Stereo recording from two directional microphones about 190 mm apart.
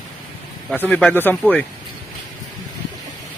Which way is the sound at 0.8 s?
10° left (ahead or behind).